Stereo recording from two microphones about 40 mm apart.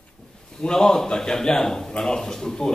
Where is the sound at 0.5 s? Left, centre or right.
Centre.